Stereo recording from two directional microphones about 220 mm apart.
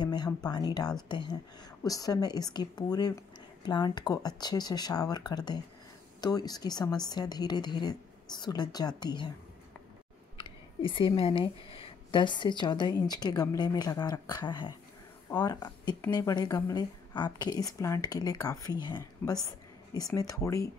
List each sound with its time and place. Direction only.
0.0 s a woman's voice: 20° left (ahead or behind)
10.4 s speech: 25° left (ahead or behind)